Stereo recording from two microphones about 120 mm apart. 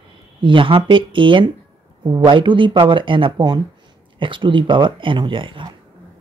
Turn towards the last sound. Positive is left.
turn(degrees=-45)  # may be behind; listen again after turning